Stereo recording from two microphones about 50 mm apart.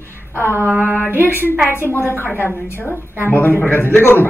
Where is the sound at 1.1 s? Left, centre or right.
Right.